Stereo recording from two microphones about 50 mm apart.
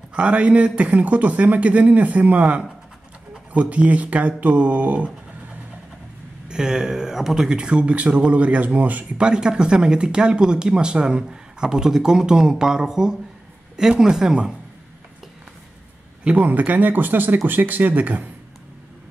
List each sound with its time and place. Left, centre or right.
0.1 s speech: right
6.5 s speech: centre
7.5 s speech: right
9.2 s speech: centre
16.3 s speech: right